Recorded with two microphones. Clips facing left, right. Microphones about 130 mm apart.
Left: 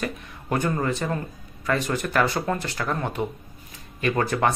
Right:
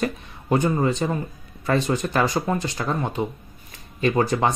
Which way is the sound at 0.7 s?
20° right (ahead or behind).